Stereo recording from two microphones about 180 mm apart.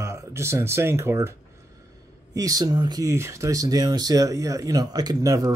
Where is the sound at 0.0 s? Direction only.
15° right (ahead or behind).